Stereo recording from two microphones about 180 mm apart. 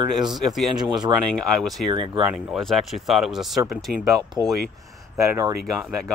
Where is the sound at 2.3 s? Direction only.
Centre (ahead or behind).